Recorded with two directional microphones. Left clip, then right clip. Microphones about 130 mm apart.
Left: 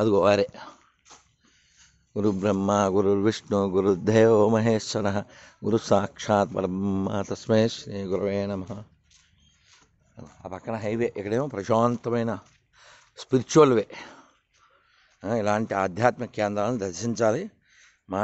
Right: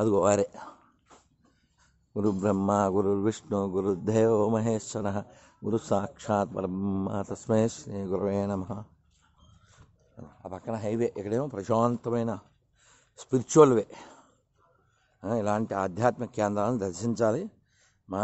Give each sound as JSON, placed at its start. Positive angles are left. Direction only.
{"t": 0.0, "sound": "speech", "side_deg": 20}
{"t": 0.3, "sound": "speech", "side_deg": 5}
{"t": 2.1, "sound": "a man's voice", "side_deg": 10}
{"t": 7.6, "sound": "speech", "side_deg": 0}
{"t": 10.4, "sound": "a man's voice", "side_deg": 25}
{"t": 16.3, "sound": "speech", "side_deg": -10}